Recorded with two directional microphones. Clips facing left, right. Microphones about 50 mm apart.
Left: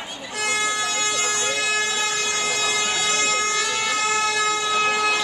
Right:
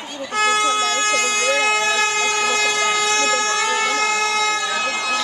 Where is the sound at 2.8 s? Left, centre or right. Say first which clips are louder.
Right 5 dB; right.